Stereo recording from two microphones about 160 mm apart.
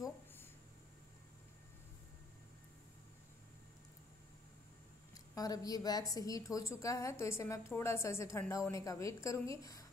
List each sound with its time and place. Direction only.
5.1 s a woman's voice: 25° left (ahead or behind)